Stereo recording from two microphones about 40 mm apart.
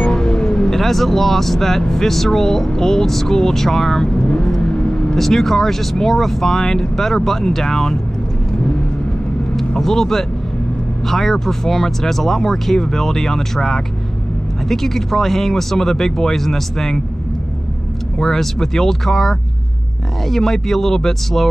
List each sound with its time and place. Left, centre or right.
0.0 s vehicle: left
0.7 s speech: centre
4.3 s vehicle: centre
5.1 s speech: centre
9.6 s speech: centre
18.2 s speech: centre